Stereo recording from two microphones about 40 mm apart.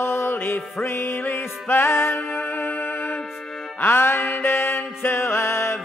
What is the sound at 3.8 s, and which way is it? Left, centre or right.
Music, left.